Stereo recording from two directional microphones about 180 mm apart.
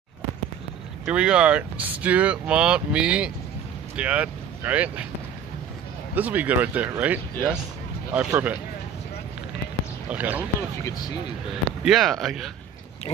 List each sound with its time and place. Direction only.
1.0 s speech: 5° right (ahead or behind)
6.1 s speech: 10° right (ahead or behind)
10.0 s speech: 10° right (ahead or behind)
10.8 s speech: 20° left (ahead or behind)
11.5 s speech: centre (ahead or behind)